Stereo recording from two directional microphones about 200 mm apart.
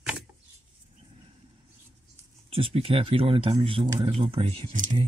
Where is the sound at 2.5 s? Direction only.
30° right (ahead or behind).